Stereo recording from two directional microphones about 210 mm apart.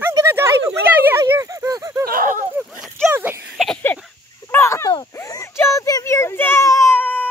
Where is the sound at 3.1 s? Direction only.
10° right (ahead or behind).